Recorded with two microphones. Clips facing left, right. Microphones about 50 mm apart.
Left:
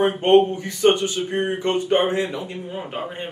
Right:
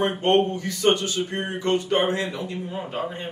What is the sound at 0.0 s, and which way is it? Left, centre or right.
A man's voice, left.